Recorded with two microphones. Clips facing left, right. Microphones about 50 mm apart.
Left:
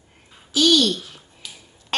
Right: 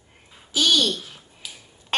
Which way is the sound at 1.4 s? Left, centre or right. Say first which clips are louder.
Even; centre.